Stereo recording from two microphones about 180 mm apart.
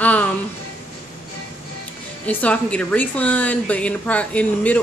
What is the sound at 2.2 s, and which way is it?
A woman's voice, 5° left (ahead or behind).